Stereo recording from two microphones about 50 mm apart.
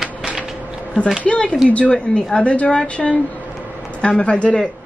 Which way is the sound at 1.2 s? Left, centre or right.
Left.